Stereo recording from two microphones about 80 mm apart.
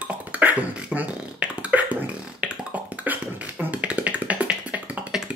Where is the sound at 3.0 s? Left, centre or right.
Centre.